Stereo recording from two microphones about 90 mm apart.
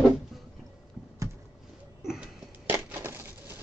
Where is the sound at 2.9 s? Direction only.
25° right (ahead or behind).